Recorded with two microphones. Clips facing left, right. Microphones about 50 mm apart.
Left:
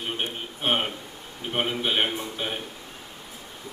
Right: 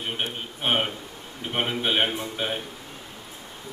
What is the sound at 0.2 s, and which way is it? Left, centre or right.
A man's voice, centre.